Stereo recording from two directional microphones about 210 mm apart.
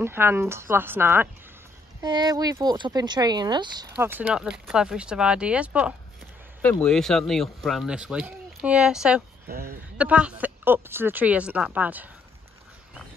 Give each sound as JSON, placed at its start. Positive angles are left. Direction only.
{"t": 0.0, "sound": "speech", "side_deg": -10}
{"t": 3.9, "sound": "speech", "side_deg": -10}
{"t": 6.6, "sound": "speech", "side_deg": 5}
{"t": 9.5, "sound": "a sound", "side_deg": -45}
{"t": 9.9, "sound": "speech", "side_deg": -5}